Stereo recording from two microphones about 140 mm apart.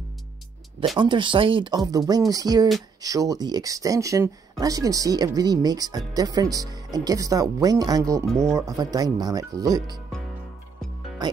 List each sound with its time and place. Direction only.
0.9 s speech: 35° right (ahead or behind)